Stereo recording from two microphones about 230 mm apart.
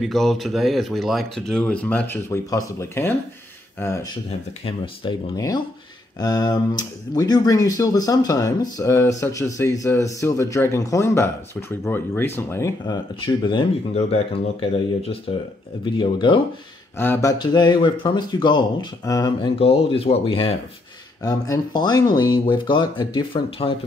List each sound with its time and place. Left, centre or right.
0.0 s speech: centre; by 23.7 s left